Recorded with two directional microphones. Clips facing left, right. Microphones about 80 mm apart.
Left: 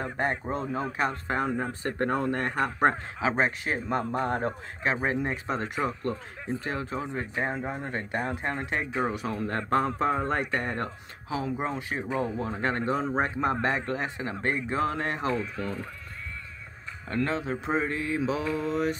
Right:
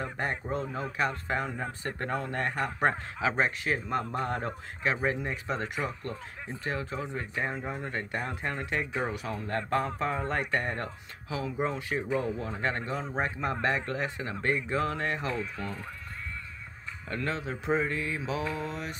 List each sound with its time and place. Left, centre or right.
0.0 s speech: left
17.1 s speech: left